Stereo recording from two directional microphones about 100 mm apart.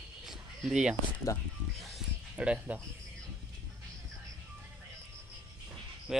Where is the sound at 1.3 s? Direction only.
30° left (ahead or behind).